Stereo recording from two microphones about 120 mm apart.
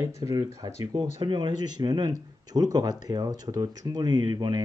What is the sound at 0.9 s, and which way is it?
Speech, 40° right (ahead or behind).